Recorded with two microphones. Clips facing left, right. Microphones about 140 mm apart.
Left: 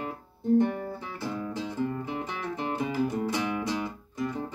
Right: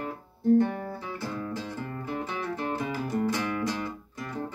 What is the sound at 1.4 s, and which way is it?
Music, 20° left (ahead or behind).